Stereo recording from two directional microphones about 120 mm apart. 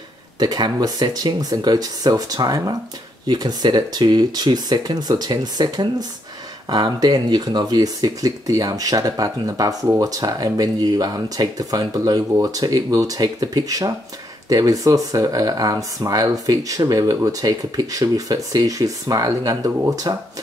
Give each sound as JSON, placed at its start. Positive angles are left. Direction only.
{"t": 0.4, "sound": "speech", "side_deg": -35}